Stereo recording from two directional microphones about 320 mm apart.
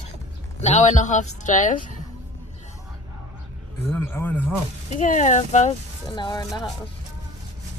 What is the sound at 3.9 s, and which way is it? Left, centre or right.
Speech, centre.